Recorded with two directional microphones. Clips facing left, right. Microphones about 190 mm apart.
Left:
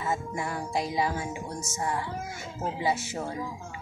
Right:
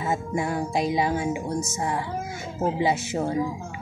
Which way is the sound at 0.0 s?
20° right (ahead or behind).